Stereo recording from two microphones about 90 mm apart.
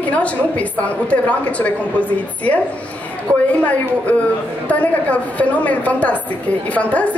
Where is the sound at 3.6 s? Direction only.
15° left (ahead or behind).